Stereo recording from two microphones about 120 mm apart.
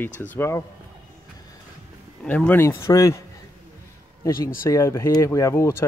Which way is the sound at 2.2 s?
15° left (ahead or behind).